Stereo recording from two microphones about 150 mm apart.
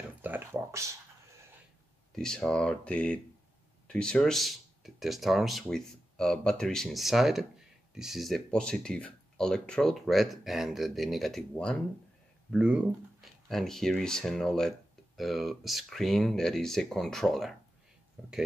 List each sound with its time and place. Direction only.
0.2 s a sound: 15° right (ahead or behind)
2.1 s speech: 5° left (ahead or behind)
12.4 s speech: 5° right (ahead or behind)